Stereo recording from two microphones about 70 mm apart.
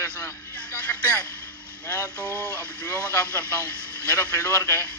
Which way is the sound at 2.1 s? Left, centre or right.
Left.